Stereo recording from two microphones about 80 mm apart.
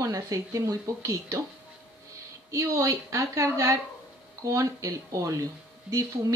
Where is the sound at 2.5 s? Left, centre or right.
Right.